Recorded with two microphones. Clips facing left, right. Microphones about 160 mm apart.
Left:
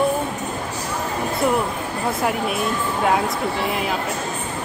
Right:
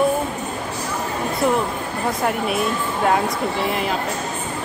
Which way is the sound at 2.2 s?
Centre (ahead or behind).